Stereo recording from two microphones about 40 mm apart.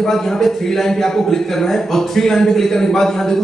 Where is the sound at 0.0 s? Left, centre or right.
Centre.